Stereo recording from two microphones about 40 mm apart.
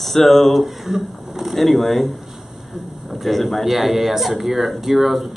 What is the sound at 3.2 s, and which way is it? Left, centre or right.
Speech, centre.